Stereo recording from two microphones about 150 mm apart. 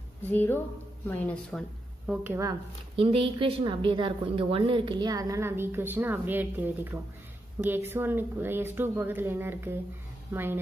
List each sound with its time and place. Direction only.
0.2 s speech: 10° left (ahead or behind)
2.2 s speech: 20° right (ahead or behind)
3.0 s a woman's voice: 40° right (ahead or behind); by 10.6 s 15° right (ahead or behind)